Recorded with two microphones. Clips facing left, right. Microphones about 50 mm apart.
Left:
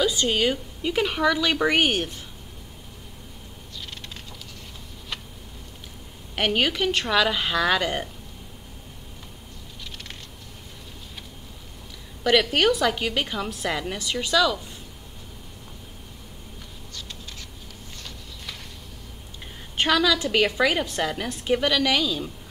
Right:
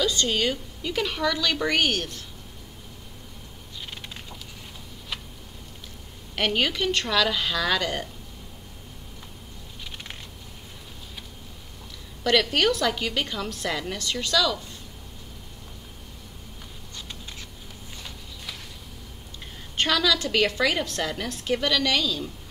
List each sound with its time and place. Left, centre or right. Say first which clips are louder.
0.0 s a woman's voice: left 2 dB; centre
6.3 s a woman's voice: left 2 dB; centre
12.2 s a woman's voice: left 2 dB; centre
19.8 s a woman's voice: left 2 dB; centre